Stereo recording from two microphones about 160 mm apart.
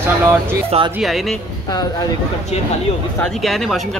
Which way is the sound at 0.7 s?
35° right (ahead or behind).